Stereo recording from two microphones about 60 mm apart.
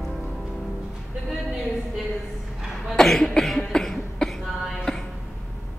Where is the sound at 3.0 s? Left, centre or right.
Centre.